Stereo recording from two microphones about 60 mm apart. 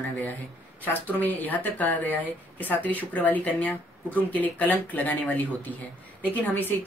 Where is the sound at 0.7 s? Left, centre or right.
Left.